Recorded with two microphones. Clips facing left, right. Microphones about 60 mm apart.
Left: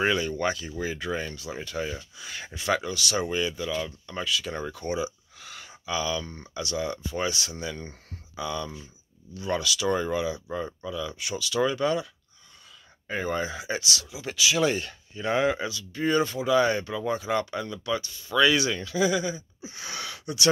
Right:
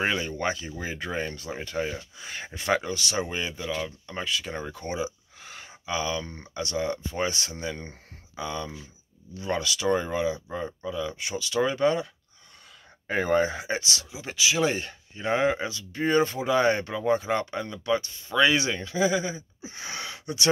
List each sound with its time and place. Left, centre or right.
0.0 s speech: right
4.8 s speech: right
10.5 s speech: centre
13.0 s speech: right
13.7 s speech: right